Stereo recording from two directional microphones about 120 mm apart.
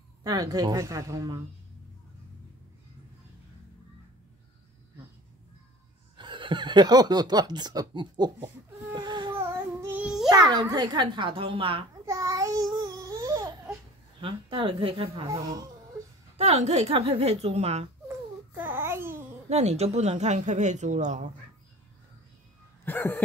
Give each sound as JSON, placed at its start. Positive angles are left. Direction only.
{"t": 0.2, "sound": "a child's voice", "side_deg": -30}
{"t": 6.1, "sound": "speech", "side_deg": -40}
{"t": 8.9, "sound": "a sound", "side_deg": -40}
{"t": 9.4, "sound": "child singing", "side_deg": -15}
{"t": 10.3, "sound": "a child's voice", "side_deg": -35}
{"t": 12.1, "sound": "babbling", "side_deg": -30}
{"t": 14.2, "sound": "a woman's voice", "side_deg": -45}
{"t": 16.3, "sound": "a woman's voice", "side_deg": -65}
{"t": 18.0, "sound": "babbling", "side_deg": -20}
{"t": 19.5, "sound": "speech", "side_deg": -65}
{"t": 22.8, "sound": "a sound", "side_deg": 15}